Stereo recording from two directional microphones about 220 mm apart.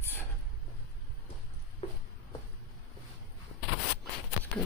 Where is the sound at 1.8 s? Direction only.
25° left (ahead or behind).